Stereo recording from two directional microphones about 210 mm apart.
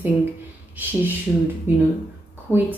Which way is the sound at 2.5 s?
10° left (ahead or behind).